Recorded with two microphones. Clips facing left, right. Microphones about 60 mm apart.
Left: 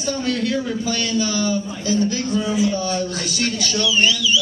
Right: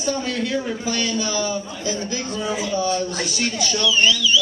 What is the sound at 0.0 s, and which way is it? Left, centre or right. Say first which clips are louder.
A man's voice: left 2 dB; centre.